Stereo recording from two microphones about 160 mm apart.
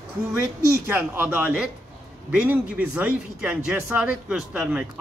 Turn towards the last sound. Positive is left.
turn(degrees=-5)  # may be behind; listen again after turning